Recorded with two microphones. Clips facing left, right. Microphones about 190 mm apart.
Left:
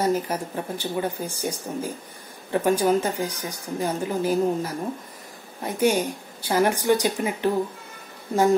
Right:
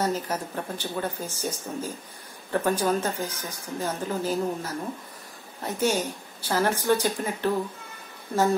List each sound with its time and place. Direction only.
0.0 s speech: 10° left (ahead or behind)